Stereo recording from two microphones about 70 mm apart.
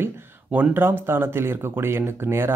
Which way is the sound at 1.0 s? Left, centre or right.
Right.